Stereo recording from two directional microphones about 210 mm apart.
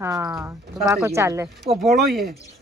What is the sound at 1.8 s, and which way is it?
Speech, centre (ahead or behind).